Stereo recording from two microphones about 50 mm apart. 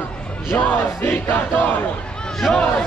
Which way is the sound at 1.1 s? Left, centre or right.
Left.